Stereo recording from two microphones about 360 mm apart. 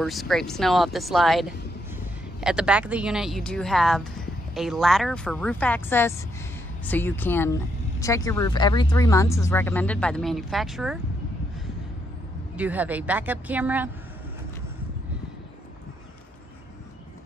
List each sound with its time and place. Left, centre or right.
0.0 s speech: centre
12.5 s speech: centre